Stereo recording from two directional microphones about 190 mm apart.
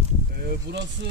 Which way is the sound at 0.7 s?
65° right (ahead or behind).